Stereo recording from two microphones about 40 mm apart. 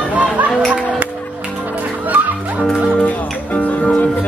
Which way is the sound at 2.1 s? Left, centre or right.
Right.